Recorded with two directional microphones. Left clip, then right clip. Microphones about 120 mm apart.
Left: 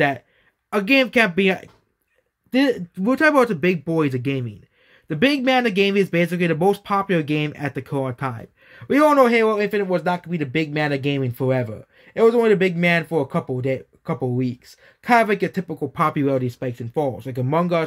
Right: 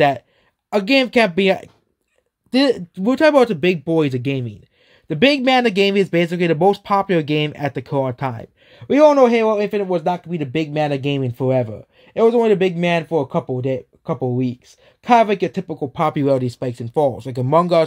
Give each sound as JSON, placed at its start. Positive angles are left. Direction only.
{"t": 0.7, "sound": "speech", "side_deg": -35}
{"t": 2.5, "sound": "speech", "side_deg": -50}
{"t": 2.9, "sound": "speech", "side_deg": -35}
{"t": 15.9, "sound": "speech", "side_deg": -30}
{"t": 16.2, "sound": "speech", "side_deg": -50}